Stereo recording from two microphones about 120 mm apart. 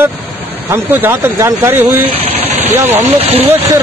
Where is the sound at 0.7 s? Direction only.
20° right (ahead or behind).